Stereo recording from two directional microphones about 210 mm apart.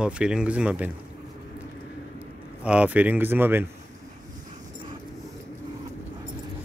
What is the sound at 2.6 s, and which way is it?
Speech, 5° right (ahead or behind).